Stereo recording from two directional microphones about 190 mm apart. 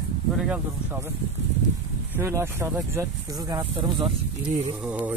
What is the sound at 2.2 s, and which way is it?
Speech, 15° right (ahead or behind).